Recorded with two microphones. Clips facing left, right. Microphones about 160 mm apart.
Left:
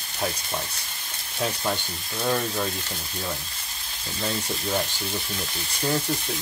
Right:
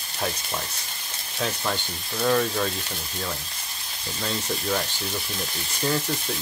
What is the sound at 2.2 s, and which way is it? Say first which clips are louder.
Speech: right 3 dB; 5° left (ahead or behind).